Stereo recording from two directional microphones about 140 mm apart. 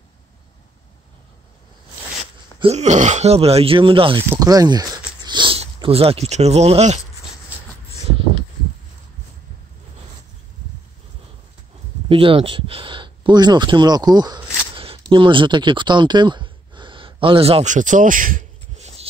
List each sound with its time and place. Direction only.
2.6 s speech: 55° right (ahead or behind)
4.3 s speech: 25° right (ahead or behind); by 7.0 s 50° right (ahead or behind)
12.1 s speech: 40° right (ahead or behind)
17.6 s speech: 65° right (ahead or behind)